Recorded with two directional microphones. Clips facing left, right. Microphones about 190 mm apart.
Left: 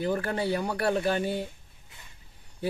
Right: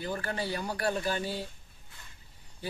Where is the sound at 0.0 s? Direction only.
60° left (ahead or behind).